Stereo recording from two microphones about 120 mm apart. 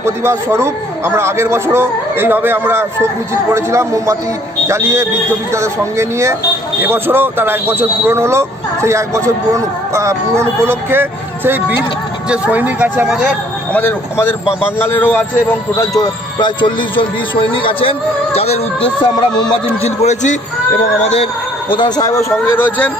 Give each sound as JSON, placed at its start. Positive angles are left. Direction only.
{"t": 0.0, "sound": "a man's voice", "side_deg": -20}
{"t": 13.7, "sound": "a man's voice", "side_deg": 15}
{"t": 16.0, "sound": "speech", "side_deg": 40}
{"t": 21.0, "sound": "music", "side_deg": 60}
{"t": 21.6, "sound": "a man's voice", "side_deg": 40}